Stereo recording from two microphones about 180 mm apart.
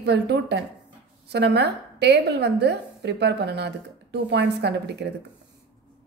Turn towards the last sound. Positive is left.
turn(degrees=-70)  # may be behind; listen again after turning